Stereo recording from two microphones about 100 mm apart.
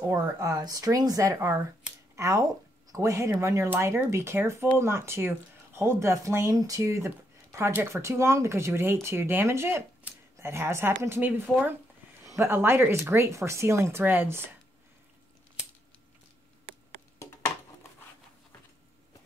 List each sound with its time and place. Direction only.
0.1 s speech: 40° right (ahead or behind); by 14.4 s 20° right (ahead or behind)